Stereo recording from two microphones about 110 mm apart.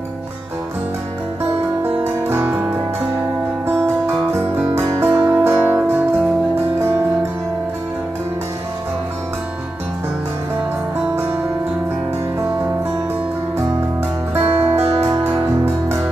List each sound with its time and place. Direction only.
1.9 s music: 20° right (ahead or behind)
6.8 s music: 20° right (ahead or behind)
14.3 s music: 20° right (ahead or behind)
14.8 s music: 70° right (ahead or behind)
15.2 s music: 25° right (ahead or behind)